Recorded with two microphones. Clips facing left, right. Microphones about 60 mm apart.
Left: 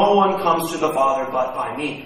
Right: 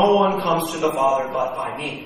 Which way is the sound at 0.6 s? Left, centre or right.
Left.